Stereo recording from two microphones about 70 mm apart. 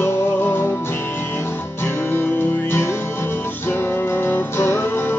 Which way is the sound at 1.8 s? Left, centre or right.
Left.